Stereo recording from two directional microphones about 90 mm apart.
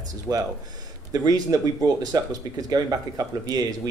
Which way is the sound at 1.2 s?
50° right (ahead or behind).